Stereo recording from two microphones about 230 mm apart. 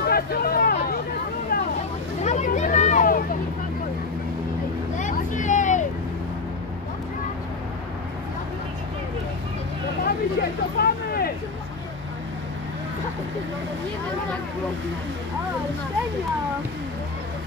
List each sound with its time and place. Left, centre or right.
0.0 s a sound: left
1.5 s vehicle: left
2.2 s vehicle: left
4.9 s vehicle: left
10.8 s vehicle: left